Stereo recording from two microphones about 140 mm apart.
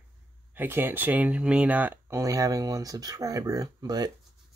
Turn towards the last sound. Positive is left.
turn(degrees=-30)  # may be behind; listen again after turning